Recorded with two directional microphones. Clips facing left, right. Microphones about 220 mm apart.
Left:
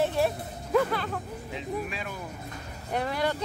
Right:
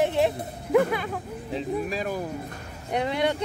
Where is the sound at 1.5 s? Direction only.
40° right (ahead or behind).